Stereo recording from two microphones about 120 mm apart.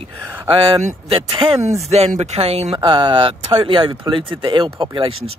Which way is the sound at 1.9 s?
60° right (ahead or behind).